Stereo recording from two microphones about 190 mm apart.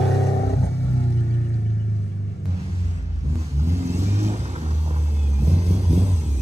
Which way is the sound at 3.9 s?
35° right (ahead or behind).